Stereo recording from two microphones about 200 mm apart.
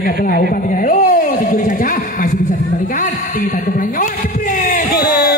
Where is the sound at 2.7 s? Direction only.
40° left (ahead or behind).